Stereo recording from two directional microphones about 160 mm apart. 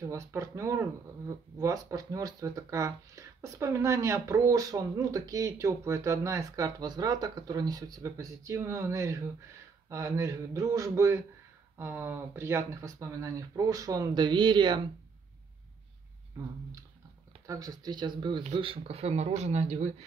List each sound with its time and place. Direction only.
0.0 s speech: 20° right (ahead or behind)
17.5 s speech: 25° right (ahead or behind); by 19.9 s 45° right (ahead or behind)